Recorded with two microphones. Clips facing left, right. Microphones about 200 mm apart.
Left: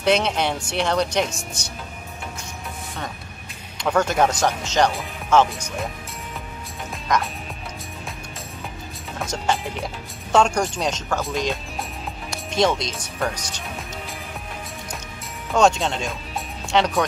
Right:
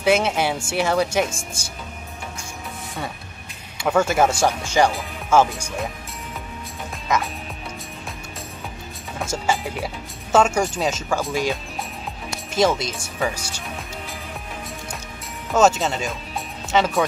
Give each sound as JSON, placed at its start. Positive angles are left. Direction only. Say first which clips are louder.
{"t": 0.0, "sound": "speech", "louder": "right 1 dB", "side_deg": -5}
{"t": 3.7, "sound": "speech", "louder": "right 1 dB", "side_deg": -10}
{"t": 7.1, "sound": "speech", "louder": "even", "side_deg": -5}
{"t": 9.2, "sound": "speech", "louder": "right 1 dB", "side_deg": -5}
{"t": 12.3, "sound": "music", "louder": "right 1 dB", "side_deg": -5}
{"t": 15.5, "sound": "speech", "louder": "right 1 dB", "side_deg": -5}